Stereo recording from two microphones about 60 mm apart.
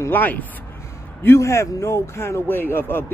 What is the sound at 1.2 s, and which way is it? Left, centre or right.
A man's voice, left.